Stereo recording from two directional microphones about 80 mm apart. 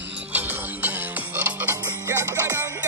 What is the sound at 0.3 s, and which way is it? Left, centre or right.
Music, right.